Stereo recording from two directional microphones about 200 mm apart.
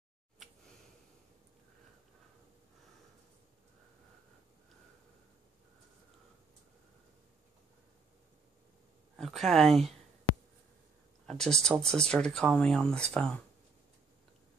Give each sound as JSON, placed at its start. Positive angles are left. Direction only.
{"t": 9.1, "sound": "speech", "side_deg": 0}
{"t": 11.2, "sound": "speech", "side_deg": 5}